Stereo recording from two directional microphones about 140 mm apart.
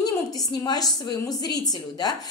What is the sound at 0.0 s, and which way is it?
A woman's voice, 30° left (ahead or behind).